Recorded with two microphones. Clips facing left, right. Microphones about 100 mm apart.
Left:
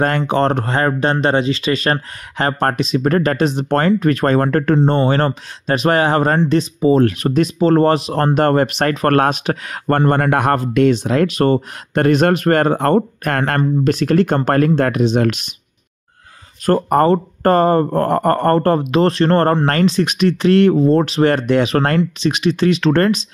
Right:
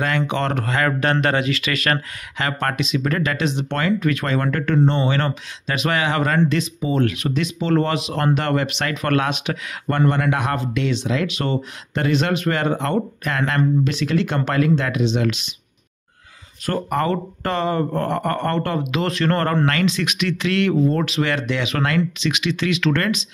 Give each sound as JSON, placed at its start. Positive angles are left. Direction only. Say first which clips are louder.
{"t": 0.3, "sound": "speech", "louder": "left 6 dB", "side_deg": 35}
{"t": 16.6, "sound": "speech", "louder": "left 8 dB", "side_deg": 40}